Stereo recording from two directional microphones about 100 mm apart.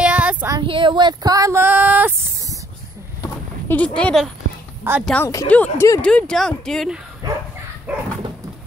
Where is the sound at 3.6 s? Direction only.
15° left (ahead or behind).